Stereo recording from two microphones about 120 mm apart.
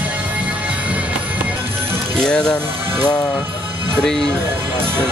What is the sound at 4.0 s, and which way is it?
Speech, 5° left (ahead or behind).